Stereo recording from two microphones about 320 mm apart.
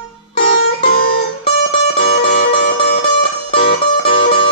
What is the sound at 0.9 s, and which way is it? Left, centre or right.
Music, left.